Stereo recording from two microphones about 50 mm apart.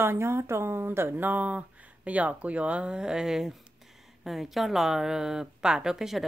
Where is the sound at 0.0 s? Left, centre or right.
Right.